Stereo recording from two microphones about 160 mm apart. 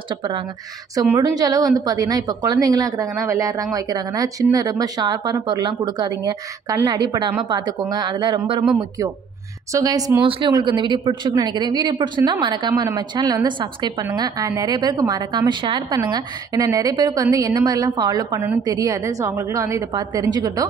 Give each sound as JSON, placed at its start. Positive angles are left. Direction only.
{"t": 0.1, "sound": "speech", "side_deg": -30}